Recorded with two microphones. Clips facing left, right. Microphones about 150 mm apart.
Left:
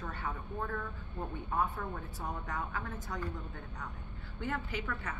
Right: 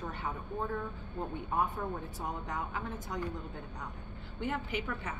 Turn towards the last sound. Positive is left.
turn(degrees=-20)  # may be behind; listen again after turning